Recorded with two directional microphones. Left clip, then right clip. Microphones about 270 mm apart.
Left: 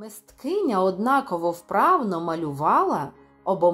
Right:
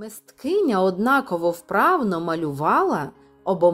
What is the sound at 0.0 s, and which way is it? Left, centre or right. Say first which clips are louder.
Speech: right 3 dB; right.